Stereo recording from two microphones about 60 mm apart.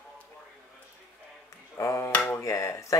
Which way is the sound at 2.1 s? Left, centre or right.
Left.